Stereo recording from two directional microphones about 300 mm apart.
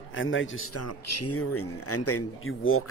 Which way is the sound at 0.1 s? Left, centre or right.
Left.